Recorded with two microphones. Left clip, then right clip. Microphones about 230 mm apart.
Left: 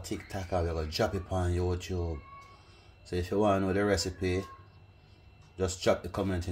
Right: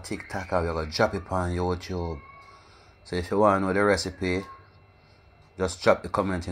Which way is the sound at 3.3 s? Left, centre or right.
Centre.